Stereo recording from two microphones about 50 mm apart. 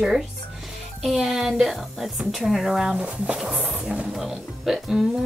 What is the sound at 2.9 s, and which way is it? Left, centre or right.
Speech, right.